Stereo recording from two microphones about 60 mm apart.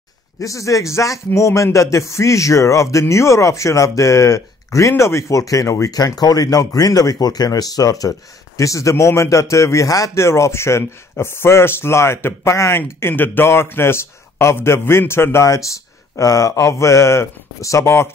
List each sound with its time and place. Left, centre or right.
0.4 s speech: left
8.5 s speech: left
10.1 s speech: left
15.4 s speech: left